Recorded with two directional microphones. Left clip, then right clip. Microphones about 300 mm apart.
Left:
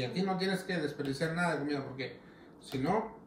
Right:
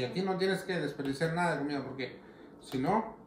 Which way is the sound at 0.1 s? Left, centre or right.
Centre.